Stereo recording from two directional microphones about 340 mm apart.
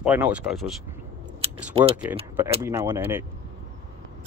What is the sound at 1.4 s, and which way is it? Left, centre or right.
Speech, centre.